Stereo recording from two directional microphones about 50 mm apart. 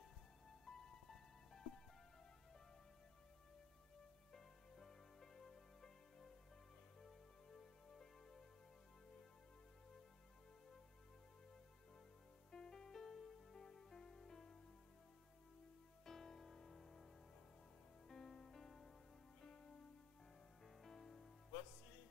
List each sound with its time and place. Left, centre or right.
0.5 s music: centre
4.3 s music: centre
12.4 s music: centre
16.1 s music: centre